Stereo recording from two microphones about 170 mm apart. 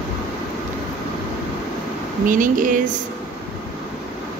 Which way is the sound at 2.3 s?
50° right (ahead or behind).